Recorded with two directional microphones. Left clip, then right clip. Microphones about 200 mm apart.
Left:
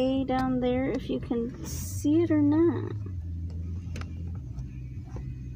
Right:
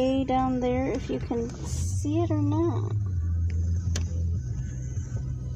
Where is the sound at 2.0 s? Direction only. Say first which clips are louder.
Left 4 dB; 35° left (ahead or behind).